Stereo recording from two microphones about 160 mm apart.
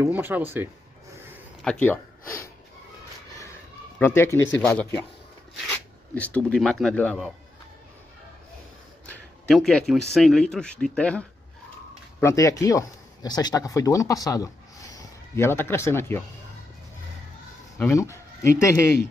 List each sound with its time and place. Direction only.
0.0 s speech: 10° right (ahead or behind)
1.6 s a sound: 5° left (ahead or behind)
4.0 s speech: 15° left (ahead or behind)
4.6 s speech: 5° left (ahead or behind)
9.0 s speech: 5° left (ahead or behind)
12.2 s speech: 20° left (ahead or behind)
17.7 s speech: 15° left (ahead or behind)